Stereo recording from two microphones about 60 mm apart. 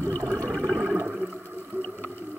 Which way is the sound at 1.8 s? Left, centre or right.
Left.